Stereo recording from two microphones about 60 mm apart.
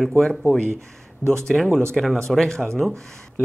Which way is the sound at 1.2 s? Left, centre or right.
Left.